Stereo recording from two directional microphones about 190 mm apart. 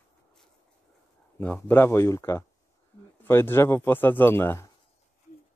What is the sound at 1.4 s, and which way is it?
Speech, 10° left (ahead or behind).